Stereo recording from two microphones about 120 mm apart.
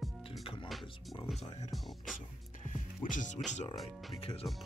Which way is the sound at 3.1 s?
90° left.